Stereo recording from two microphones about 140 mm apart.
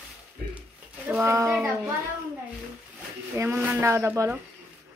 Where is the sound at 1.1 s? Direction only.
10° right (ahead or behind).